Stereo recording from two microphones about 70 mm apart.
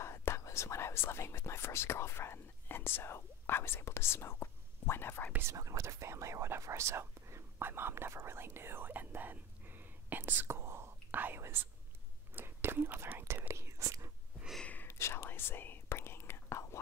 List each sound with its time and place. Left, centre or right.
0.0 s speech: left
5.6 s speech: right
12.4 s whispering: right
13.5 s whispering: right
14.6 s a sound: left
14.9 s whispering: left